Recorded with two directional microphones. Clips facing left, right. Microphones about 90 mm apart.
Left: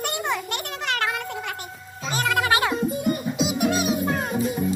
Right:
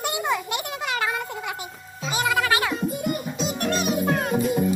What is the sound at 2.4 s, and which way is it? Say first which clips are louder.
Music: left 1 dB; 20° left (ahead or behind).